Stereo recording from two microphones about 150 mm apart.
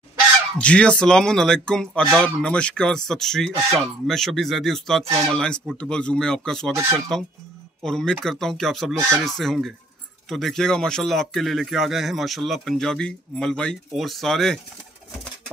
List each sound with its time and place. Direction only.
0.6 s speech: 10° left (ahead or behind)
6.7 s speech: 15° right (ahead or behind)
7.8 s speech: 5° left (ahead or behind)